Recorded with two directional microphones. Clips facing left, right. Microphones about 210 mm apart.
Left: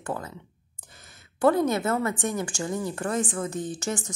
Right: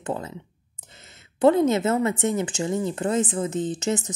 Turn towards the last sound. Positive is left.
turn(degrees=-20)  # may be behind; listen again after turning